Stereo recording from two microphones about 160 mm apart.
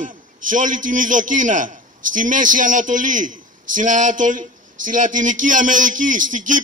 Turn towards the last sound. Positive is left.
turn(degrees=-55)  # may be behind; listen again after turning